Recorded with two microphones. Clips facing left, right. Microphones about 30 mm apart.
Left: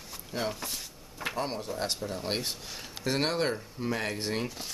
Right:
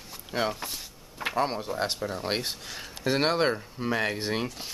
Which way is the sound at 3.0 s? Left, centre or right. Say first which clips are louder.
Right 4 dB; right.